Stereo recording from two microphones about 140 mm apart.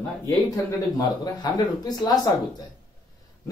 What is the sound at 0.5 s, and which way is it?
Speech, 30° left (ahead or behind).